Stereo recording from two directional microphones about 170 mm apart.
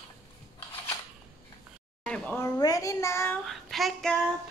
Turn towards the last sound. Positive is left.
turn(degrees=0)  # may be behind; listen again after turning